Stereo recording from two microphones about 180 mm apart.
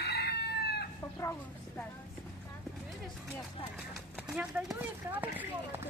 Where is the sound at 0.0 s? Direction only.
65° left (ahead or behind).